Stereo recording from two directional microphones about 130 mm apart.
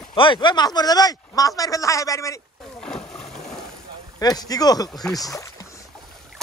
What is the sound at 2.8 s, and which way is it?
Splash, 5° left (ahead or behind).